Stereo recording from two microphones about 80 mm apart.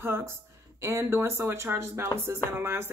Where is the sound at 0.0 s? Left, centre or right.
Right.